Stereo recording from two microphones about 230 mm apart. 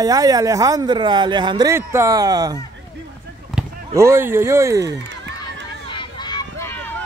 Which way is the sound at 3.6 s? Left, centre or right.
Centre.